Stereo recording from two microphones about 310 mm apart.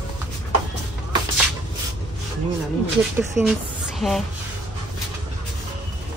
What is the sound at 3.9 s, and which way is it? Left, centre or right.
Music, centre.